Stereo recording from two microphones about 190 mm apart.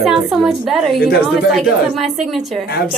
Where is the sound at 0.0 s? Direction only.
Centre (ahead or behind).